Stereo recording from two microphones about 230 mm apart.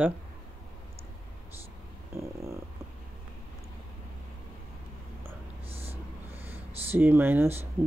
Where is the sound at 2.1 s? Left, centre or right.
Centre.